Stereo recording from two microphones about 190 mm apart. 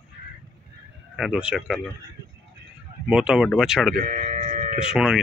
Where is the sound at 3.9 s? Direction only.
45° right (ahead or behind).